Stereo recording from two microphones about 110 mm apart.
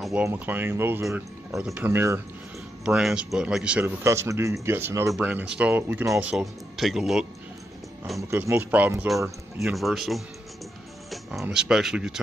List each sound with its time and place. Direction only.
0.0 s speech: 5° right (ahead or behind)
0.3 s speech: 20° right (ahead or behind)
1.6 s a man's voice: 10° right (ahead or behind)
1.9 s speech: 20° right (ahead or behind)
2.8 s a man's voice: 5° right (ahead or behind)
3.8 s a man's voice: 25° right (ahead or behind)
6.3 s speech: centre (ahead or behind)
8.2 s a man's voice: 25° right (ahead or behind)
9.6 s speech: centre (ahead or behind)
11.4 s speech: 5° right (ahead or behind)